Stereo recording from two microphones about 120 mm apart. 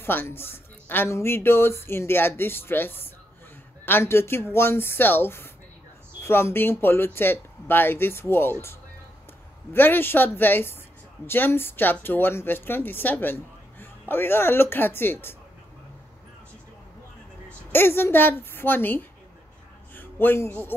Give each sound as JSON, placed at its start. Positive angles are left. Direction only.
{"t": 0.0, "sound": "speech", "side_deg": 20}
{"t": 17.7, "sound": "a man's voice", "side_deg": 20}